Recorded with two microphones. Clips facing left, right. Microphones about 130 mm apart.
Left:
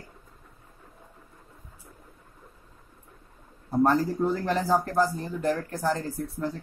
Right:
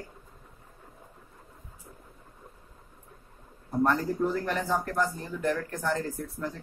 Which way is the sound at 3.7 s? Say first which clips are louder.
Left 3 dB; 30° left (ahead or behind).